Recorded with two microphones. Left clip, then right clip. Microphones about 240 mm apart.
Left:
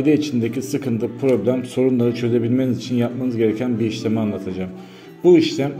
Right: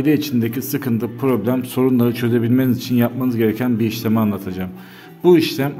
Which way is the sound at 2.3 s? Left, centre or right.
Right.